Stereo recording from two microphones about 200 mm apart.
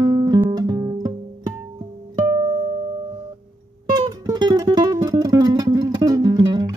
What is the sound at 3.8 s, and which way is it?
Music, 20° right (ahead or behind).